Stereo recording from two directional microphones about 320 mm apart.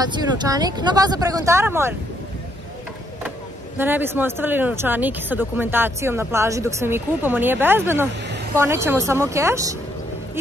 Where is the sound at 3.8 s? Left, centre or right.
Centre.